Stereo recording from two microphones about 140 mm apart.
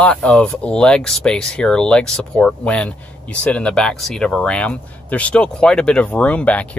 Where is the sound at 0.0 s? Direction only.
10° left (ahead or behind).